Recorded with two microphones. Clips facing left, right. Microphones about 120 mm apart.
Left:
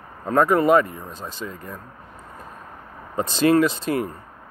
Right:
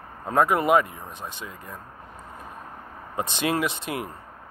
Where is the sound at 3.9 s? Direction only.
10° right (ahead or behind).